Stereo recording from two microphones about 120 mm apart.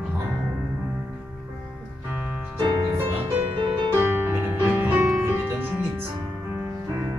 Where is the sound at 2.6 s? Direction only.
40° right (ahead or behind).